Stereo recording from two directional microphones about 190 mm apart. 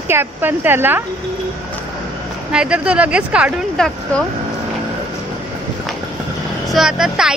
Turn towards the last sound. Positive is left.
turn(degrees=-5)  # may be behind; listen again after turning